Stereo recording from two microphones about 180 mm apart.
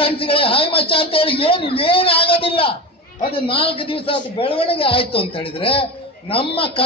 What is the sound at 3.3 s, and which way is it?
A man's voice, 30° left (ahead or behind).